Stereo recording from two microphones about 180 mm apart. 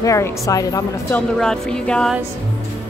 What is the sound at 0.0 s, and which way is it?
A woman's voice, 20° left (ahead or behind).